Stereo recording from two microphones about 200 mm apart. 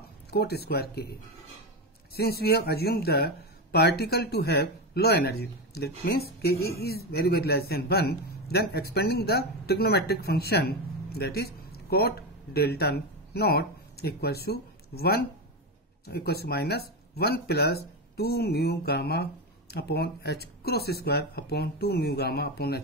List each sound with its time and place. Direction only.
0.3 s speech: 55° left (ahead or behind)
2.1 s speech: 50° left (ahead or behind)